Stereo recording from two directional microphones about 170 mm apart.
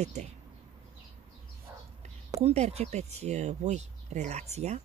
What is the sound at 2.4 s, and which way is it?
Speech, 40° right (ahead or behind).